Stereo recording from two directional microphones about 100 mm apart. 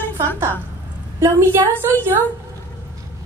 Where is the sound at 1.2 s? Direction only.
25° right (ahead or behind).